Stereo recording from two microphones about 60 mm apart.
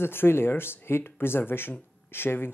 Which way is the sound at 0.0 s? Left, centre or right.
Left.